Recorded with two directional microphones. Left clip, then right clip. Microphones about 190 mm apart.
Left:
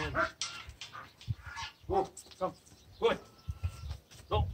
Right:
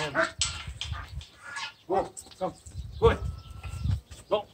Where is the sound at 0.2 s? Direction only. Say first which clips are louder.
Right 5 dB; 55° right (ahead or behind).